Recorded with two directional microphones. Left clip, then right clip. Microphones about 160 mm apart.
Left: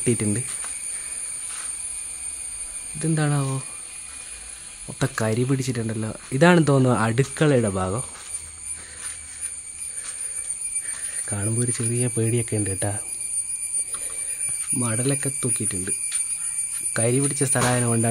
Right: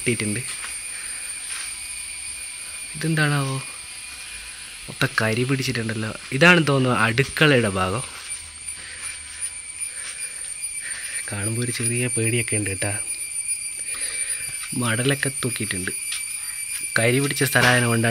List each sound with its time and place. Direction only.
0.0 s speech: 35° left (ahead or behind)
3.0 s speech: 15° left (ahead or behind)
4.9 s speech: 20° left (ahead or behind)
6.3 s speech: 25° left (ahead or behind)
7.4 s speech: 10° left (ahead or behind)
11.2 s speech: 20° left (ahead or behind)
14.8 s speech: centre (ahead or behind)
16.9 s speech: 5° left (ahead or behind)